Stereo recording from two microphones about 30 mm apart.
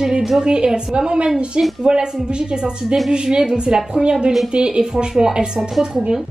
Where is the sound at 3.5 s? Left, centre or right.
Centre.